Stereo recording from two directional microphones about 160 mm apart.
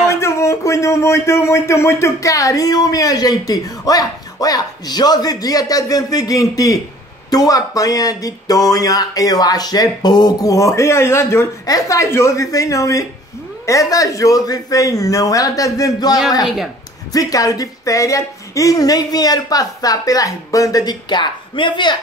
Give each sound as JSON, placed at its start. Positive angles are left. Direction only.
{"t": 0.1, "sound": "speech", "side_deg": 15}